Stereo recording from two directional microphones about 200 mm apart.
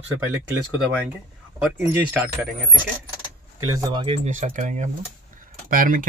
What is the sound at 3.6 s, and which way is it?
Speech, 25° right (ahead or behind).